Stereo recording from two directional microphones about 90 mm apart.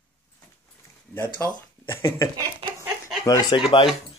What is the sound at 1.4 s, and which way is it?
Speech, 30° left (ahead or behind).